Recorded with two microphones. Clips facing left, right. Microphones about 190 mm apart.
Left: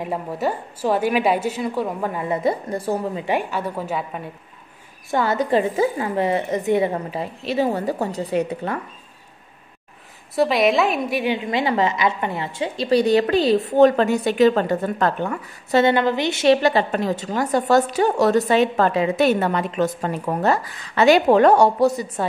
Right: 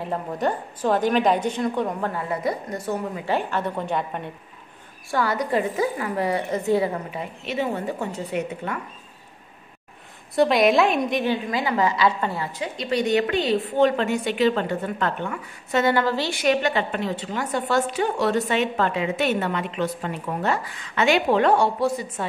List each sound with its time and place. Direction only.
0.0 s a woman's voice: 10° left (ahead or behind); by 3.3 s 30° left (ahead or behind)
3.3 s a woman's voice: 10° left (ahead or behind)
5.1 s a woman's voice: 25° left (ahead or behind)
6.9 s a woman's voice: 30° left (ahead or behind)
10.3 s a woman's voice: centre (ahead or behind)
11.3 s a woman's voice: 25° left (ahead or behind)
15.8 s a woman's voice: 20° left (ahead or behind)
16.6 s a woman's voice: 40° left (ahead or behind)